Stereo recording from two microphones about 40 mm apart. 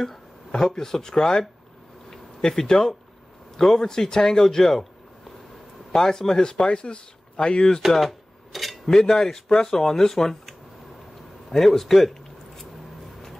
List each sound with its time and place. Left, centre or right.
0.7 s speech: centre
2.4 s speech: centre
5.9 s speech: centre
8.5 s cutlery: centre
8.9 s speech: centre
11.5 s a sound: centre